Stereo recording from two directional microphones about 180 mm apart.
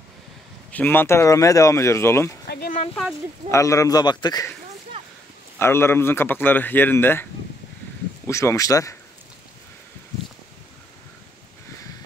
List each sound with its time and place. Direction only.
0.7 s speech: 10° left (ahead or behind)
2.4 s a sound: 60° left (ahead or behind)
2.9 s speech: 5° left (ahead or behind)
3.4 s speech: 15° left (ahead or behind)
5.6 s speech: 15° left (ahead or behind)
8.3 s speech: 15° left (ahead or behind)